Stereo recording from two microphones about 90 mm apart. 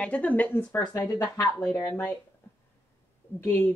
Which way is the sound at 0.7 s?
45° left (ahead or behind).